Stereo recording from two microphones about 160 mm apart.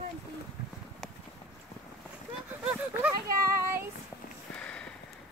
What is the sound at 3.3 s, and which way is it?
Child singing, 20° right (ahead or behind).